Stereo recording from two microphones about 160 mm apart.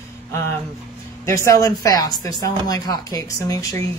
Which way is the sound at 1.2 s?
20° left (ahead or behind).